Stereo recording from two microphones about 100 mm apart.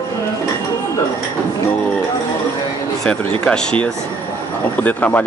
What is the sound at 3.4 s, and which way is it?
Speech, 10° left (ahead or behind).